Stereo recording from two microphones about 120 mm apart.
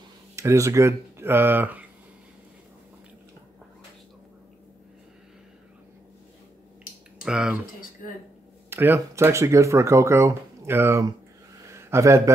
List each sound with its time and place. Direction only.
0.4 s speech: 25° right (ahead or behind)
7.2 s speech: 5° right (ahead or behind)
8.6 s speech: 20° right (ahead or behind)
11.6 s a sound: 25° right (ahead or behind)